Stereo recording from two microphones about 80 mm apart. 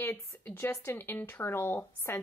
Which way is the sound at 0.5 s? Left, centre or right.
Left.